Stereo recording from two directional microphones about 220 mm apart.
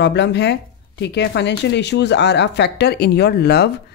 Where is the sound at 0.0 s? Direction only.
50° left (ahead or behind).